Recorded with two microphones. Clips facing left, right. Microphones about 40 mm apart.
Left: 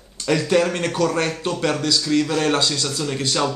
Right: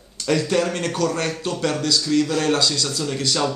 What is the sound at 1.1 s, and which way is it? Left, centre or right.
Speech, centre.